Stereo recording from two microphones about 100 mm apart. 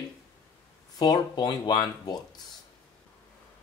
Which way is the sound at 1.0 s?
45° left (ahead or behind).